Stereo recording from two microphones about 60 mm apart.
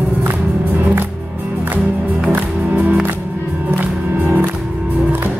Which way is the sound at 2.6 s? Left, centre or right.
Right.